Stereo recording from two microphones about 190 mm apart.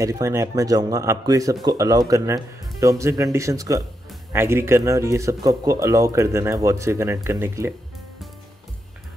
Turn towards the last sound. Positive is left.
turn(degrees=-15)  # may be behind; listen again after turning